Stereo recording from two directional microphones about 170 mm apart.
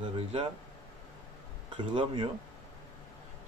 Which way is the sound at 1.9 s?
30° right (ahead or behind).